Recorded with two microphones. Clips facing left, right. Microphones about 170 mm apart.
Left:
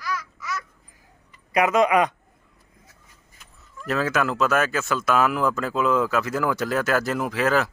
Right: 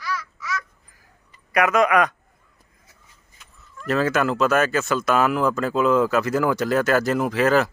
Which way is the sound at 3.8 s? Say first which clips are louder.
Right 3 dB; centre (ahead or behind).